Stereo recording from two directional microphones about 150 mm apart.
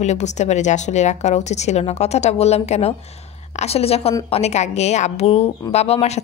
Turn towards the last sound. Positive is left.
turn(degrees=45)  # may be behind; listen again after turning